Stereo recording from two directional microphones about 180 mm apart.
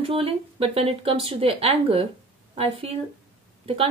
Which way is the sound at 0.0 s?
30° right (ahead or behind).